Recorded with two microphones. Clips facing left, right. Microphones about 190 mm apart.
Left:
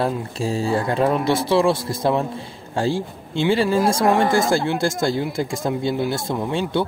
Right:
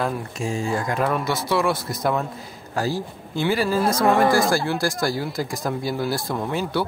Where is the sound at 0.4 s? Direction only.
35° left (ahead or behind).